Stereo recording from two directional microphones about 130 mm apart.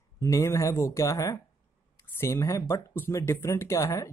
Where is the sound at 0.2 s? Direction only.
20° left (ahead or behind).